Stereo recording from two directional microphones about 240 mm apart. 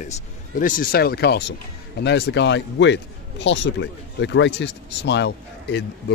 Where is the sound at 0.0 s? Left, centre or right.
Left.